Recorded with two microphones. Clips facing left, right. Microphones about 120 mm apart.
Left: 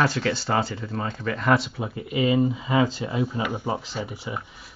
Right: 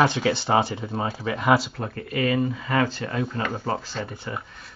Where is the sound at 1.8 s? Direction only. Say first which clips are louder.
Left 1 dB; 15° left (ahead or behind).